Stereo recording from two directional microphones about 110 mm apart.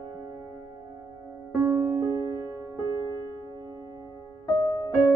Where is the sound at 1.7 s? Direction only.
25° right (ahead or behind).